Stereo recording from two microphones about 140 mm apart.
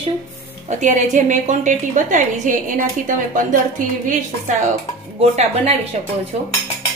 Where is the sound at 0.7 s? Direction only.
60° right (ahead or behind).